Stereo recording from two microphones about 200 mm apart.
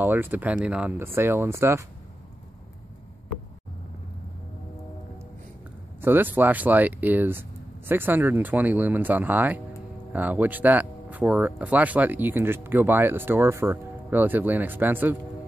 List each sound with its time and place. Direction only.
0.0 s speech: 10° right (ahead or behind)
5.9 s speech: 10° right (ahead or behind)